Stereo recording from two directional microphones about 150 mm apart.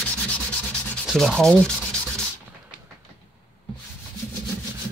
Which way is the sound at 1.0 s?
Centre (ahead or behind).